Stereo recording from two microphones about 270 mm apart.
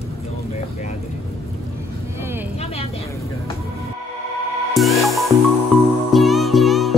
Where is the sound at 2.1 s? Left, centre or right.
Centre.